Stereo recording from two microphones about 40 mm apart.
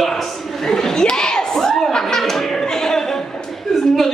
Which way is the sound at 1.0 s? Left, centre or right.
Centre.